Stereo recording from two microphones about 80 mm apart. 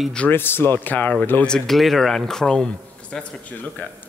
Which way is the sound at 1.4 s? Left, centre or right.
Centre.